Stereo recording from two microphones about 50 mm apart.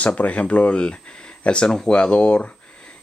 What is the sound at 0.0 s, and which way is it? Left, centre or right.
Speech, left.